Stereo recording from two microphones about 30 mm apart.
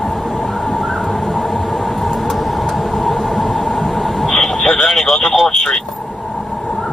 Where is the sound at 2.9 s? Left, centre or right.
Centre.